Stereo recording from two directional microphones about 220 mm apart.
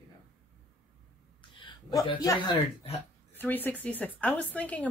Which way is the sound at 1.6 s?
20° left (ahead or behind).